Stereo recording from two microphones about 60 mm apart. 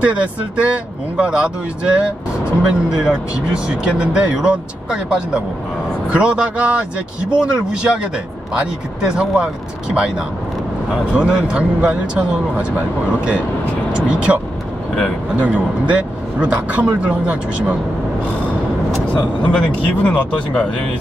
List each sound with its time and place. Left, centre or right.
0.0 s speech: right
13.9 s speech: centre
15.4 s speech: right
19.5 s speech: left